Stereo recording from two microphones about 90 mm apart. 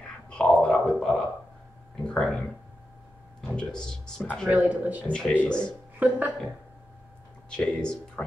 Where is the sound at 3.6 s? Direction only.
10° left (ahead or behind).